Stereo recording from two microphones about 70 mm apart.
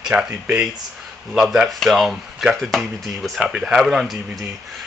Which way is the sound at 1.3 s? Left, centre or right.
Centre.